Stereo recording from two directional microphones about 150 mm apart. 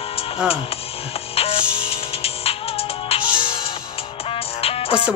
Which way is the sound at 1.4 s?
40° left (ahead or behind).